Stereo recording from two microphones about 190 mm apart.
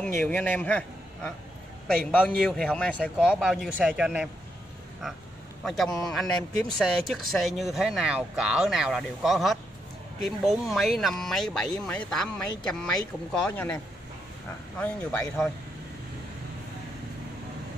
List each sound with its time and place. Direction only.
0.2 s a man's voice: 5° left (ahead or behind)
5.7 s speech: centre (ahead or behind)
14.8 s speech: 10° left (ahead or behind)